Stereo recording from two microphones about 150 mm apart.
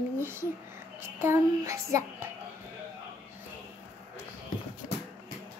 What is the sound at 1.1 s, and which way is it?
Child singing, 20° right (ahead or behind).